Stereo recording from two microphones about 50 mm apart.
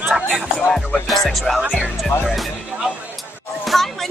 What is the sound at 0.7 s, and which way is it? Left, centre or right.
Speech, centre.